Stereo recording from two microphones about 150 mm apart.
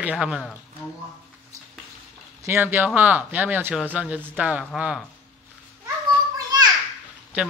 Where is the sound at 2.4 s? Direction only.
15° right (ahead or behind).